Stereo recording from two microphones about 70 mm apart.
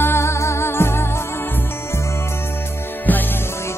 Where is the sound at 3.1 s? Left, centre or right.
Left.